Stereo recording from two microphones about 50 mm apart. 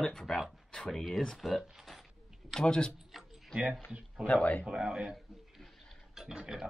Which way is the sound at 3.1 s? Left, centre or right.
Centre.